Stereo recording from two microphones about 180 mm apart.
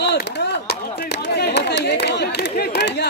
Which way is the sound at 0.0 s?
70° left (ahead or behind).